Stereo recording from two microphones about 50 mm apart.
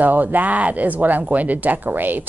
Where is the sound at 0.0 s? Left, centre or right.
Right.